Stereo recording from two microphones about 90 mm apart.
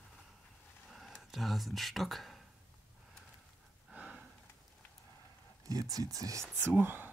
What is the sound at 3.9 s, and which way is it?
Gasp, 10° right (ahead or behind).